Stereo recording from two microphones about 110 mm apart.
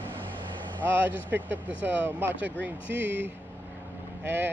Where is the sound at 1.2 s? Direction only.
15° right (ahead or behind).